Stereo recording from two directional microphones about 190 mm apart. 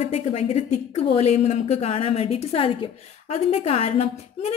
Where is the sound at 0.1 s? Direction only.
30° left (ahead or behind).